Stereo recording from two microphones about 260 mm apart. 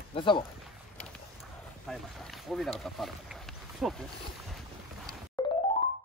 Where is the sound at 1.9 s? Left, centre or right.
Centre.